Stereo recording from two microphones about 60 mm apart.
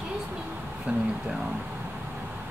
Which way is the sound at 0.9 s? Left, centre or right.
Centre.